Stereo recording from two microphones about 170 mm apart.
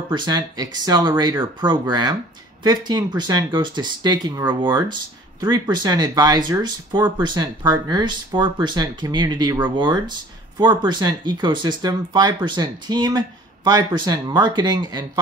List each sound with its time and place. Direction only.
0.1 s speech: 25° right (ahead or behind)